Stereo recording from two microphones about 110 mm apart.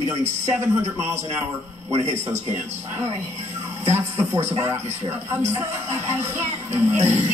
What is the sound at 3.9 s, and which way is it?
A woman's voice, 25° right (ahead or behind).